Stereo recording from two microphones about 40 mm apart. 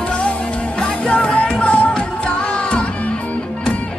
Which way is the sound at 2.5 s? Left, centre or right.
Left.